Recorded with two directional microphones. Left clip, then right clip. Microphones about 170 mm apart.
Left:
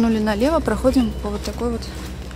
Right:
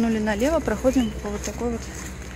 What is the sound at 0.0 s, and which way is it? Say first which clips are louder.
Speech: left 4 dB; 5° left (ahead or behind).